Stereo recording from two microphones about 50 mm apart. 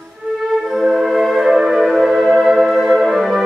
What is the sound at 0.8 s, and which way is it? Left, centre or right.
Music, centre.